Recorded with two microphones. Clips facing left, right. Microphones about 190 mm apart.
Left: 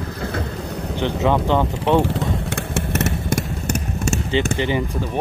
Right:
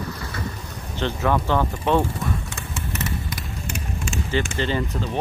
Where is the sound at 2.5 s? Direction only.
60° left (ahead or behind); by 3.4 s 85° left.